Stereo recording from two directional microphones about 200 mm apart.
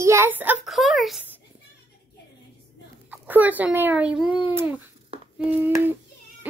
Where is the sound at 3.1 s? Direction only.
10° right (ahead or behind).